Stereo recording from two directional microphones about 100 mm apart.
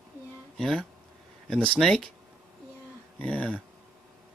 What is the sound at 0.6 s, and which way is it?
Speech, 5° left (ahead or behind).